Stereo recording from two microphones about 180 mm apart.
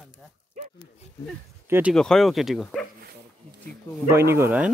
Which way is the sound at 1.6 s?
15° right (ahead or behind).